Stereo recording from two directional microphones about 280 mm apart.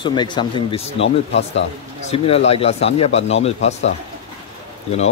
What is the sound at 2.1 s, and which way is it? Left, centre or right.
Speech, left.